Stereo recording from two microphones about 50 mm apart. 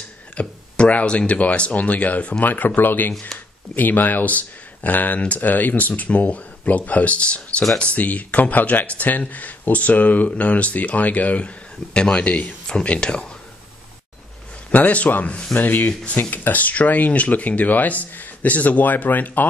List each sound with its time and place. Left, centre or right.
0.4 s speech: left
14.7 s speech: left